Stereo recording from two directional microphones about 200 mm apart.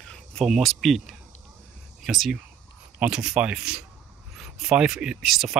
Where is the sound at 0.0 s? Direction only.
5° left (ahead or behind).